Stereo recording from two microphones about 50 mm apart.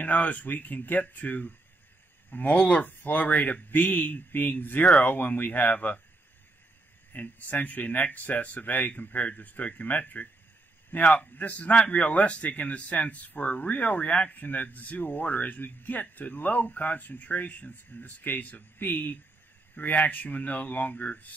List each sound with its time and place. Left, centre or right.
0.0 s a man's voice: left
3.0 s a man's voice: left
7.1 s a man's voice: left